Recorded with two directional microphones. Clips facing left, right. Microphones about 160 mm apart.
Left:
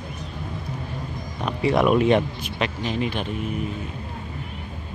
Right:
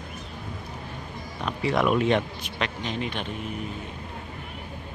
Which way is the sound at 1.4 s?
15° left (ahead or behind).